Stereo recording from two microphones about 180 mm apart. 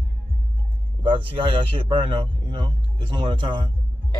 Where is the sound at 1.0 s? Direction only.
30° right (ahead or behind).